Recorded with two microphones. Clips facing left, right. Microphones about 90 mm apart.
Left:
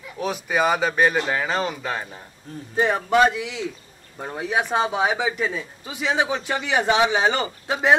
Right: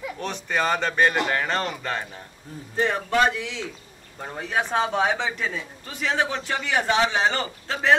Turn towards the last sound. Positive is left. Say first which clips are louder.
# left 3 dB
turn(degrees=15)  # may be behind; listen again after turning